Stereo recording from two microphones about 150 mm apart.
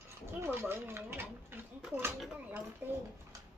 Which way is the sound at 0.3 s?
15° right (ahead or behind).